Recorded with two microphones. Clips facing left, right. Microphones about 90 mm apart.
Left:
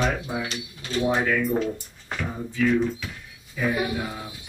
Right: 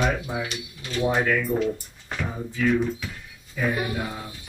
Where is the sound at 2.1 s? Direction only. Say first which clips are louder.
Even; 5° right (ahead or behind).